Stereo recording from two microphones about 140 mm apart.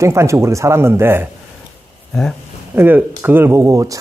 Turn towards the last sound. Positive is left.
turn(degrees=-25)  # may be behind; listen again after turning